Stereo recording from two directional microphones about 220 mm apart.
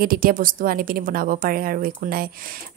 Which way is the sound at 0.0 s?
40° right (ahead or behind).